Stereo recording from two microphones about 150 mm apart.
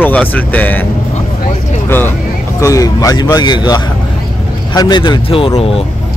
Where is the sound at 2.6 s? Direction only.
20° left (ahead or behind); by 5.8 s 40° left (ahead or behind).